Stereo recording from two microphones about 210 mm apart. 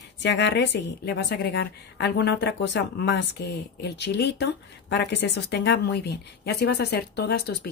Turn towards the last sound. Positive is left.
turn(degrees=50)  # may be behind; listen again after turning